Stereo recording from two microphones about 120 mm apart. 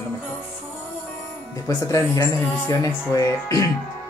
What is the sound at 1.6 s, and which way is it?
Speech, 25° left (ahead or behind).